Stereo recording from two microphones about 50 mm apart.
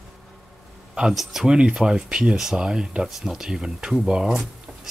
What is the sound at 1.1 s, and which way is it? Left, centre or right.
Speech, centre.